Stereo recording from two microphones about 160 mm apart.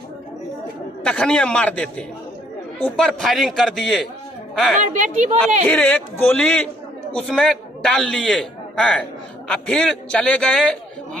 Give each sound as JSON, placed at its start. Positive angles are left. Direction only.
{"t": 1.0, "sound": "a man's voice", "side_deg": 5}
{"t": 4.8, "sound": "a woman's voice", "side_deg": -50}
{"t": 5.7, "sound": "a man's voice", "side_deg": 5}